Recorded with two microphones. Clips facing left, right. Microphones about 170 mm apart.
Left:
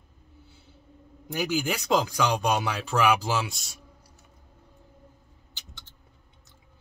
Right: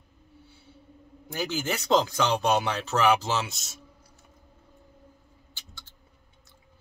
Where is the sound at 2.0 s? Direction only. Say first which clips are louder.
Right 1 dB; 20° right (ahead or behind).